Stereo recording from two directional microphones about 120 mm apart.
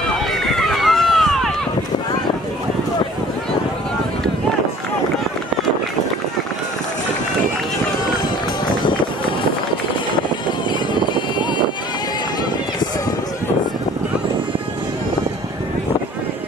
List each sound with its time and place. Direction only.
0.3 s run: centre (ahead or behind)
11.0 s vehicle: 40° left (ahead or behind)